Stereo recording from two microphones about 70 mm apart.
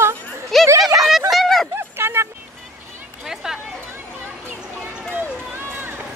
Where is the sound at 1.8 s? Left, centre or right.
Right.